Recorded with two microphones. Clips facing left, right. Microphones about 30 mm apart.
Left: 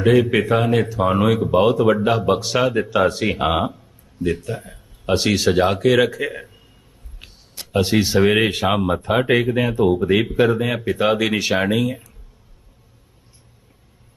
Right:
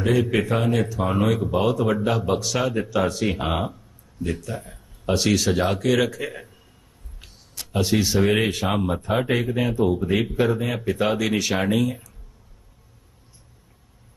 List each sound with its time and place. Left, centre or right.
0.0 s speech: left
0.3 s speech: centre; by 3.4 s left
3.5 s a sound: left
5.1 s speech: left
7.8 s speech: left
11.5 s speech: centre